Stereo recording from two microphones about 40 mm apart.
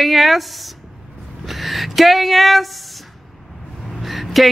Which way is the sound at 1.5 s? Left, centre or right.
Centre.